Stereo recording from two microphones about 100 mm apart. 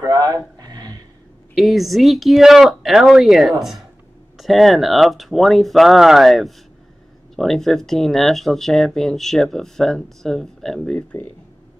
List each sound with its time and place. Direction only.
0.0 s a sound: 40° right (ahead or behind)
1.5 s speech: centre (ahead or behind)
11.1 s speech: 25° left (ahead or behind)